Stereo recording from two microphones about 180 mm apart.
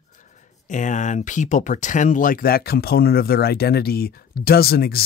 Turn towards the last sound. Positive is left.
turn(degrees=60)  # may be behind; listen again after turning